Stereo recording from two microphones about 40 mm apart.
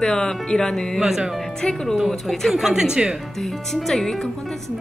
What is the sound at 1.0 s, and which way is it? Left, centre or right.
Speech, centre.